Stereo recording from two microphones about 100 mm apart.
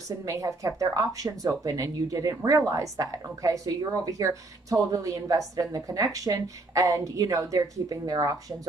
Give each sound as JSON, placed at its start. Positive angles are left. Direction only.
{"t": 0.2, "sound": "a woman's voice", "side_deg": -35}